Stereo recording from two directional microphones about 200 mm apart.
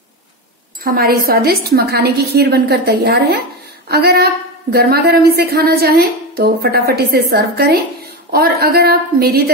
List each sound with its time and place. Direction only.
0.8 s a woman's voice: 50° right (ahead or behind)